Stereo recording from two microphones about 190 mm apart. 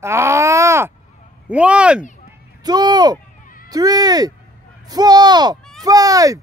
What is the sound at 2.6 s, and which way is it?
Speech, 20° right (ahead or behind).